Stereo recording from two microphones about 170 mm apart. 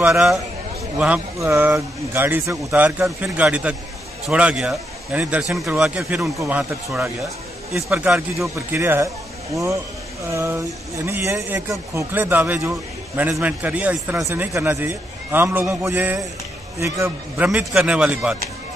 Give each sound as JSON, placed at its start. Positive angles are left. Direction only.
{"t": 0.9, "sound": "a man's voice", "side_deg": -10}
{"t": 17.5, "sound": "a man's voice", "side_deg": -5}